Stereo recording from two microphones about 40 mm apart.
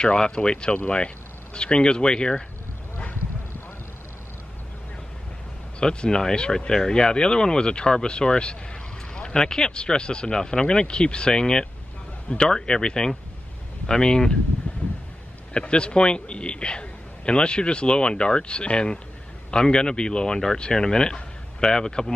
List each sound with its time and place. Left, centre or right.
0.0 s a man's voice: left
5.8 s a man's voice: left
14.7 s a sound: left
15.5 s a man's voice: left